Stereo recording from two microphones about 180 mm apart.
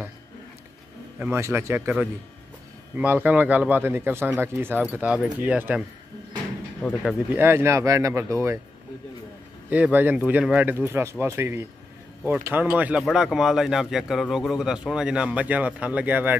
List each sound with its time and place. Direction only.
1.2 s speech: 15° right (ahead or behind)
6.8 s speech: 5° left (ahead or behind)
7.3 s speech: 15° right (ahead or behind)
9.7 s speech: 10° right (ahead or behind)